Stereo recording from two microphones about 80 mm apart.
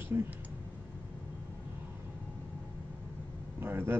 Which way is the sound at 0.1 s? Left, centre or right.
Right.